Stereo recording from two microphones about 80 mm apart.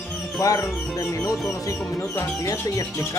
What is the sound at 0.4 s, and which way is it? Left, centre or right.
Speech, left.